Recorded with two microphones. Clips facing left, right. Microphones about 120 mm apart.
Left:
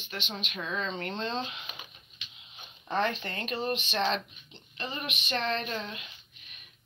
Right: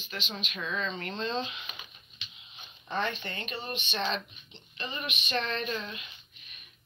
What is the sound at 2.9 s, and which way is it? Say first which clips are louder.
Speech: left 3 dB; 40° left (ahead or behind).